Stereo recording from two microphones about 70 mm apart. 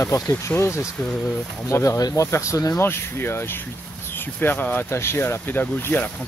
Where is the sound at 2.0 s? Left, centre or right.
Left.